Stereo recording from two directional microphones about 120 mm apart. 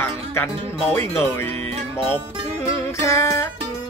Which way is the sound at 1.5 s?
60° right (ahead or behind).